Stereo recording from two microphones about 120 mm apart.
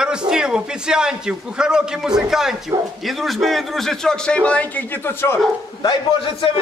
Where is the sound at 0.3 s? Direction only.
5° right (ahead or behind); by 5.4 s 20° left (ahead or behind).